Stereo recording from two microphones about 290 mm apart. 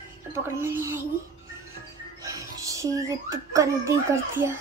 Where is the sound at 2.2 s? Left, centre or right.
Centre.